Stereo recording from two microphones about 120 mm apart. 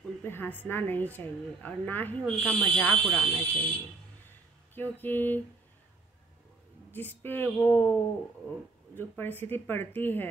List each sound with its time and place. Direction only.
0.2 s a woman's voice: 15° left (ahead or behind)
4.7 s a woman's voice: 15° left (ahead or behind)
6.9 s a woman's voice: 15° left (ahead or behind)
8.9 s a woman's voice: 15° left (ahead or behind)